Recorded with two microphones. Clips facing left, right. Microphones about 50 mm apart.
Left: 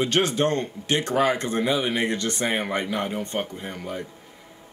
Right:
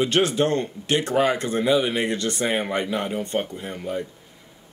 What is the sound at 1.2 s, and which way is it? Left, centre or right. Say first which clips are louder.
Speech: right 1 dB; left.